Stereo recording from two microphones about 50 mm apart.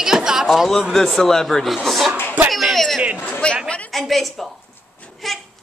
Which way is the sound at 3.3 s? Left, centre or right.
Left.